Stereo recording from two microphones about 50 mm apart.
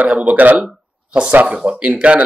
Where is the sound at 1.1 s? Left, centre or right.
Right.